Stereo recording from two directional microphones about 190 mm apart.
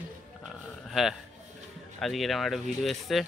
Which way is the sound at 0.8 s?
Centre (ahead or behind).